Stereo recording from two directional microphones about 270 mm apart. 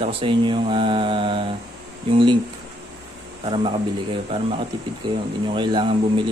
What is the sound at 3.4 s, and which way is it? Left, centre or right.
Speech, centre.